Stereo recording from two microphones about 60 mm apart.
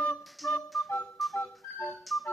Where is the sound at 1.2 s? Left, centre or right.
Centre.